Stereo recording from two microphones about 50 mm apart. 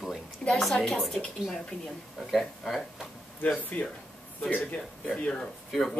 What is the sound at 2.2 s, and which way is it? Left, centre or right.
Speech, centre.